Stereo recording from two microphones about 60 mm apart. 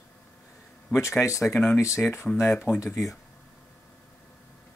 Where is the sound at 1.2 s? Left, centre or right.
Left.